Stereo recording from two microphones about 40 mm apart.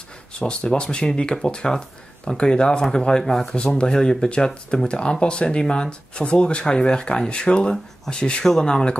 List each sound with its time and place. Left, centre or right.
0.3 s speech: left
3.5 s speech: left